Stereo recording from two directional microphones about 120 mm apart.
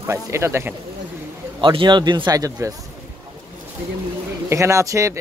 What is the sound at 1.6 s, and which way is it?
A man's voice, 45° right (ahead or behind).